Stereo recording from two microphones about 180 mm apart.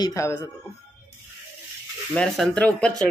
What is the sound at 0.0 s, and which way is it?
Speech, 15° left (ahead or behind).